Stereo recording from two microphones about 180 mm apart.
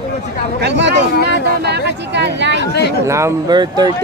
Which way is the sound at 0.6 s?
75° right (ahead or behind).